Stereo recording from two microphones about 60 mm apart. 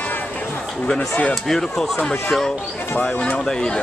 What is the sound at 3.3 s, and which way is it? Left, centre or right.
Speech, centre.